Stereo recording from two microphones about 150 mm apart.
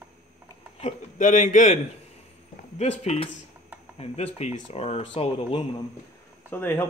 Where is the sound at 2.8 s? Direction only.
45° left (ahead or behind).